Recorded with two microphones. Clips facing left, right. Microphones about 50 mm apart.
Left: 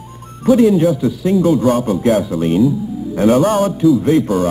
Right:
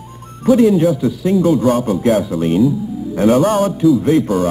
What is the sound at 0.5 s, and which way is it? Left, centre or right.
Speech, centre.